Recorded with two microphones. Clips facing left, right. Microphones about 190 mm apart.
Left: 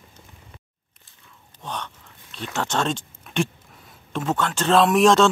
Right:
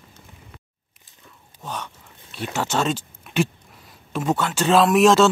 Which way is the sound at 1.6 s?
5° right (ahead or behind).